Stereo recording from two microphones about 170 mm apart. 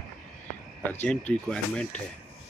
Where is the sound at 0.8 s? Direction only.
10° left (ahead or behind).